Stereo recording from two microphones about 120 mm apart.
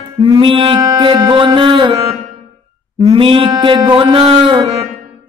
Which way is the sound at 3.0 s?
50° right (ahead or behind).